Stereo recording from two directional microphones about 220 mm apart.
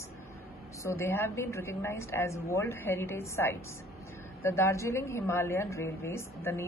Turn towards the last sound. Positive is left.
turn(degrees=10)  # may be behind; listen again after turning